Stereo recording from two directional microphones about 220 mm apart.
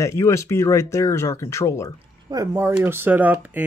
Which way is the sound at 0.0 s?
15° left (ahead or behind).